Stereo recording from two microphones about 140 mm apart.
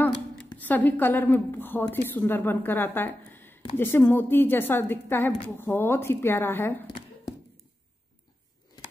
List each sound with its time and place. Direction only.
0.6 s a woman's voice: 10° left (ahead or behind)